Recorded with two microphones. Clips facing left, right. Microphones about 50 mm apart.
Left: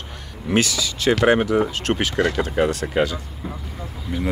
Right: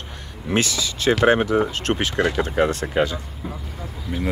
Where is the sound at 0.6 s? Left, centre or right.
Right.